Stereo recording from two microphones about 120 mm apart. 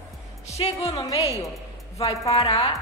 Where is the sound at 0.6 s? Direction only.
45° left (ahead or behind).